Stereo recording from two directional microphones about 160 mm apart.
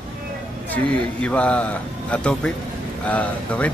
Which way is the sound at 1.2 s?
5° left (ahead or behind).